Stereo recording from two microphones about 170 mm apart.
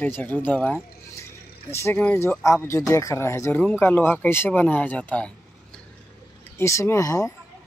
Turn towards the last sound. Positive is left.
turn(degrees=20)  # may be behind; listen again after turning